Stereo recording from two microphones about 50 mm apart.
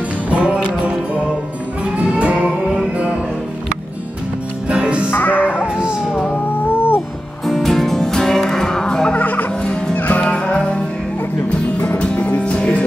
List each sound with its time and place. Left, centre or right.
0.3 s music: right
2.1 s music: right
4.6 s music: right
5.1 s music: left
6.7 s music: left
7.4 s music: centre
9.1 s music: left
10.2 s music: centre
12.0 s music: left